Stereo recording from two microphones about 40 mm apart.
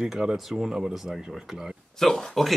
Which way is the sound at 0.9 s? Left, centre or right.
Centre.